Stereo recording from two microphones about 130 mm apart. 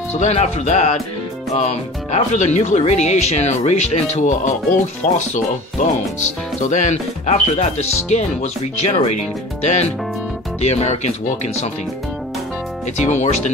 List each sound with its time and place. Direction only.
0.1 s speech: 60° left (ahead or behind)
13.0 s speech: 65° left (ahead or behind)